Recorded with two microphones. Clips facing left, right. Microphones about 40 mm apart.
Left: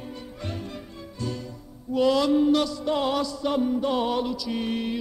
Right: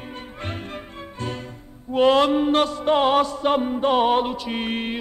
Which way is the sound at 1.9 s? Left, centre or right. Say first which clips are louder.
Right 4 dB; right.